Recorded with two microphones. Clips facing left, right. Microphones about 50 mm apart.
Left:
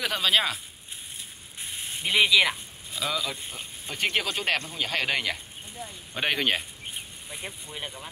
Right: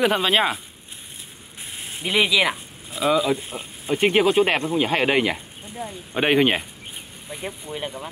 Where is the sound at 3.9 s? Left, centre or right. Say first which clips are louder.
Right 11 dB; right.